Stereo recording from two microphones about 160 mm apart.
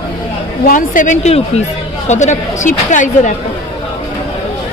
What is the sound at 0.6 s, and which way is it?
Speech, 55° left (ahead or behind).